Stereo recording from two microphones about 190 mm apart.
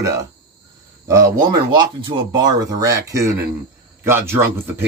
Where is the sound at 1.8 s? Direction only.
25° right (ahead or behind).